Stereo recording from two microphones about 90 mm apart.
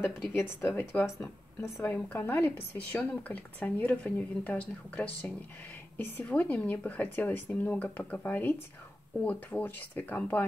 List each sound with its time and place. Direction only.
0.0 s speech: 25° left (ahead or behind)